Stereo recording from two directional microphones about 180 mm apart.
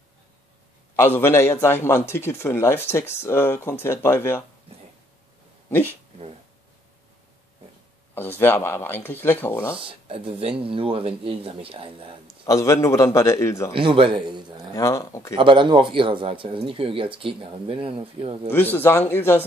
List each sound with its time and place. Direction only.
0.9 s a man's voice: 15° left (ahead or behind)
5.7 s speech: 10° left (ahead or behind)
8.1 s a man's voice: 10° left (ahead or behind)
9.8 s speech: 30° right (ahead or behind)
12.4 s a man's voice: 15° left (ahead or behind)
13.7 s speech: 30° right (ahead or behind)
14.8 s a man's voice: 15° left (ahead or behind)
15.3 s speech: 25° right (ahead or behind)
18.5 s a man's voice: 10° left (ahead or behind)